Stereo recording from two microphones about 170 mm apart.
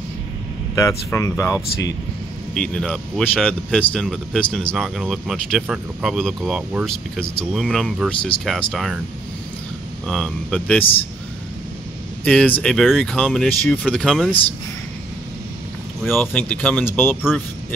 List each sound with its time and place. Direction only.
0.7 s speech: 20° left (ahead or behind)
2.5 s speech: 5° left (ahead or behind)
7.2 s speech: 5° left (ahead or behind)
10.0 s speech: centre (ahead or behind)
12.3 s speech: 5° left (ahead or behind)
16.0 s speech: centre (ahead or behind)